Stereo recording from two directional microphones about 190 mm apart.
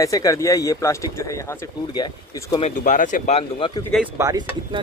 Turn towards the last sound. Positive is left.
turn(degrees=-20)  # may be behind; listen again after turning